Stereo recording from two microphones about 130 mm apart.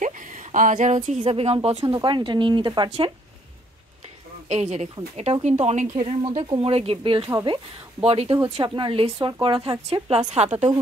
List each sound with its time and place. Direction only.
0.0 s a sound: 80° right
1.3 s a woman's voice: 50° right (ahead or behind)
2.0 s speech: 40° right (ahead or behind)
4.5 s a woman's voice: 60° right (ahead or behind)